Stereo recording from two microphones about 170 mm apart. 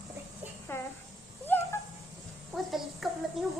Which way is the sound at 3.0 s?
Centre (ahead or behind).